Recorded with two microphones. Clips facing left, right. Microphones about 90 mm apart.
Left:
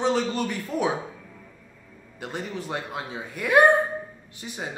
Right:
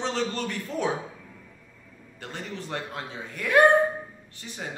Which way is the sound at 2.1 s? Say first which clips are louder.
Left 4 dB; 15° left (ahead or behind).